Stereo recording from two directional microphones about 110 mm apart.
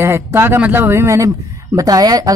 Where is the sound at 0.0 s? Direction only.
20° right (ahead or behind).